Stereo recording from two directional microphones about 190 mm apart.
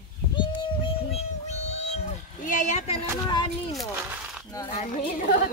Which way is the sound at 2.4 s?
40° left (ahead or behind).